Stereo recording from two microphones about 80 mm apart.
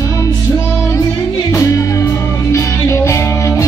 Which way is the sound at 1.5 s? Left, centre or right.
Left.